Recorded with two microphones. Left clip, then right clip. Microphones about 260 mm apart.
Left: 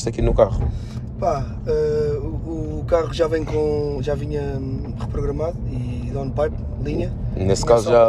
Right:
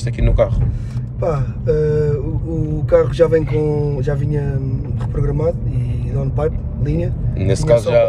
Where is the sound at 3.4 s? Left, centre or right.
Left.